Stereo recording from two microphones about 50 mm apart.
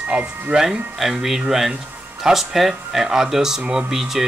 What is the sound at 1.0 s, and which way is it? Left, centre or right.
Speech, centre.